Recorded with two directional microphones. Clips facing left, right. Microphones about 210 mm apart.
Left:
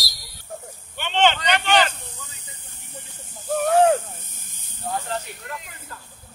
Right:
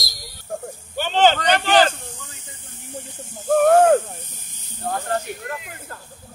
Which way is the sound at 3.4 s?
50° right (ahead or behind).